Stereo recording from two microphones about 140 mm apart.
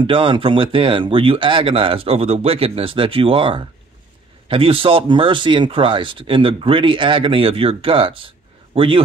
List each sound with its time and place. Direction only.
0.0 s a man's voice: 35° right (ahead or behind)